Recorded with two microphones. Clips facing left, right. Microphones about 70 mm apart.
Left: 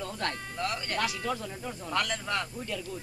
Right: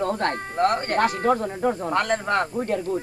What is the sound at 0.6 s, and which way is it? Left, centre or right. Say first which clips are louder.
Speech: right 12 dB; right.